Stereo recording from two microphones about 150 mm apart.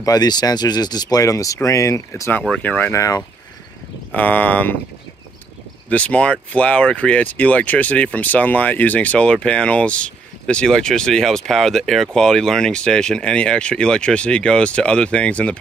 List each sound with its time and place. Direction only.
0.0 s speech: 25° left (ahead or behind)
2.4 s speech: 10° left (ahead or behind); by 3.3 s 25° left (ahead or behind)
4.1 s speech: 10° left (ahead or behind)
5.9 s speech: 10° left (ahead or behind)